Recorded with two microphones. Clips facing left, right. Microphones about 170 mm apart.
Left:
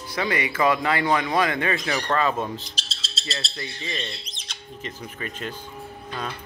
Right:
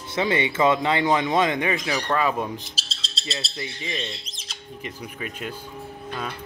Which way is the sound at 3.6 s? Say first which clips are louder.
Right 1 dB; 15° right (ahead or behind).